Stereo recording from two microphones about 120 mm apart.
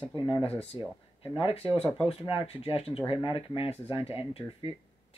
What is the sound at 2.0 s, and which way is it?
Speech, 55° left (ahead or behind).